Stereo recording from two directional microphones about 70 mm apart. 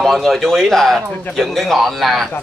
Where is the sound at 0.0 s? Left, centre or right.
Centre.